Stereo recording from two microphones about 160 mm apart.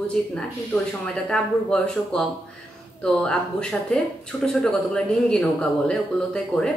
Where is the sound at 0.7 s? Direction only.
15° left (ahead or behind).